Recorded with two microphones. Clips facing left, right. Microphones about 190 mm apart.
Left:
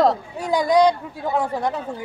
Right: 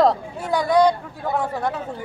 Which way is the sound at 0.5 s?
15° left (ahead or behind).